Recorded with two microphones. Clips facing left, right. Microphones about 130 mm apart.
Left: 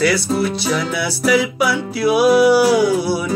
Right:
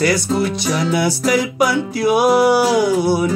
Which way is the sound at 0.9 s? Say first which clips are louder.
Right 2 dB; 45° right (ahead or behind).